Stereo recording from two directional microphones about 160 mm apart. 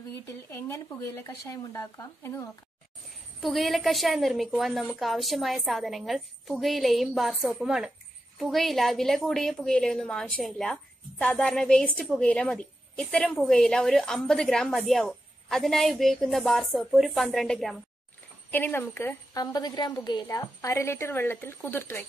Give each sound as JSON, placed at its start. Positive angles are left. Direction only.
{"t": 0.5, "sound": "a woman's voice", "side_deg": 15}
{"t": 3.1, "sound": "a woman's voice", "side_deg": 0}
{"t": 18.5, "sound": "a woman's voice", "side_deg": 10}